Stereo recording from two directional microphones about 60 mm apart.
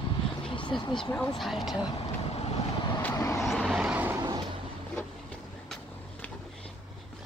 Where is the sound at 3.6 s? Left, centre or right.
Centre.